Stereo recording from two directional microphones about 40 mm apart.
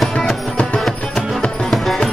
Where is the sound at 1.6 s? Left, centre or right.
Centre.